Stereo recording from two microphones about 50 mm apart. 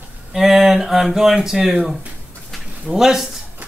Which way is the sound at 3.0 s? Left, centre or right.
Centre.